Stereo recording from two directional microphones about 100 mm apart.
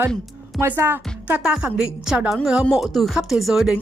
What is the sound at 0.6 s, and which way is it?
A woman's voice, 25° right (ahead or behind).